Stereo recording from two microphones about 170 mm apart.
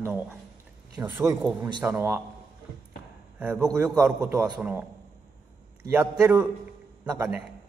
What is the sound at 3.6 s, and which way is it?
A man's voice, 20° right (ahead or behind).